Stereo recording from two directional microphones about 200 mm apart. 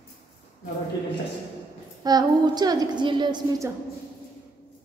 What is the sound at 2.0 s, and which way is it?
A woman's voice, 20° right (ahead or behind).